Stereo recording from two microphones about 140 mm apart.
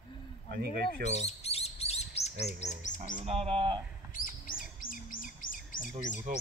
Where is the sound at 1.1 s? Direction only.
50° left (ahead or behind).